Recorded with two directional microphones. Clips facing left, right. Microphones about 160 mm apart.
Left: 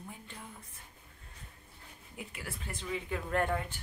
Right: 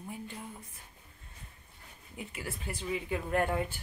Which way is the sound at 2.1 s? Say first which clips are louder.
Right 3 dB; 5° right (ahead or behind).